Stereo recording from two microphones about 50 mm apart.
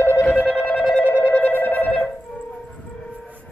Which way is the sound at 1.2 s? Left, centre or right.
Left.